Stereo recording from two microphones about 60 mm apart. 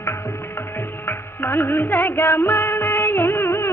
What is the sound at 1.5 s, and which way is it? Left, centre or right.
Music, left.